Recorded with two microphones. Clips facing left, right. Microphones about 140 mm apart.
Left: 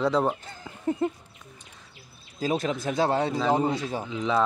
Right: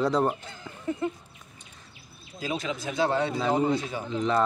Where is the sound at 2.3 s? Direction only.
45° left (ahead or behind).